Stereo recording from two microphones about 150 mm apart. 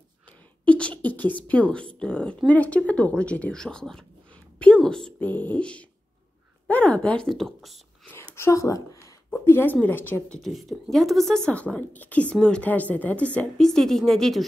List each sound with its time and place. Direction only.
0.7 s a woman's voice: 10° left (ahead or behind)
8.4 s a woman's voice: 20° left (ahead or behind)
10.4 s a woman's voice: centre (ahead or behind)